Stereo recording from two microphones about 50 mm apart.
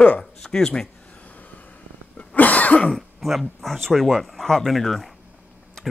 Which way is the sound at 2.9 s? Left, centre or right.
Centre.